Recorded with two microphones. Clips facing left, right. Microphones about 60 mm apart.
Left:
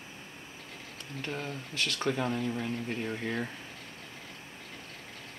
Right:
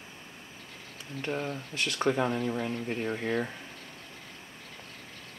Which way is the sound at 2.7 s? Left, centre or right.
Centre.